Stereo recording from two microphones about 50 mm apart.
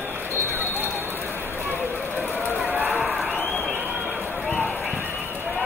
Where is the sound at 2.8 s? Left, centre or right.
Right.